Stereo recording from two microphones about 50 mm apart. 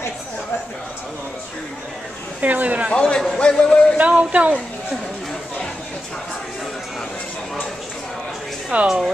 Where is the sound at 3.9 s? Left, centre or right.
Right.